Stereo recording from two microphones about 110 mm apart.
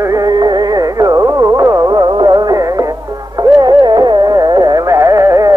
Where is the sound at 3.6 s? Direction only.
40° right (ahead or behind).